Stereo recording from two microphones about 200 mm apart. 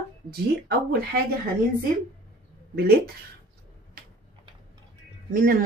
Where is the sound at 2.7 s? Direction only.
50° right (ahead or behind).